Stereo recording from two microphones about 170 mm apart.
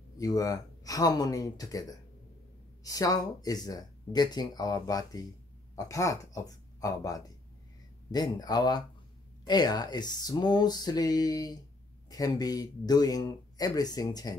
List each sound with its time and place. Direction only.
0.2 s speech: 20° left (ahead or behind)